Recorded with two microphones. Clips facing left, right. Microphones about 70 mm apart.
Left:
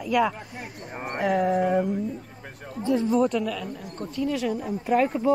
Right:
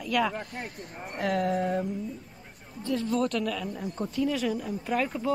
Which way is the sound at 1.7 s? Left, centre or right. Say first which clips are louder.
Left 6 dB; left.